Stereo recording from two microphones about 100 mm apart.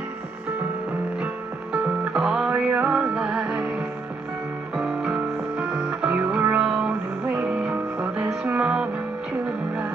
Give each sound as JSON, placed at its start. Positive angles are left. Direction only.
{"t": 1.2, "sound": "music", "side_deg": -15}